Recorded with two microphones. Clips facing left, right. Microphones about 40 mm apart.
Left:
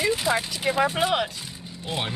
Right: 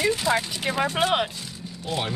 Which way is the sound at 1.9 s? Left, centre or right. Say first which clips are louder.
Right 1 dB; centre.